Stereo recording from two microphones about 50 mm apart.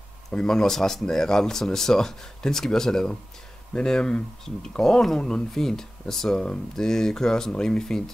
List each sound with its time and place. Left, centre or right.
0.3 s speech: centre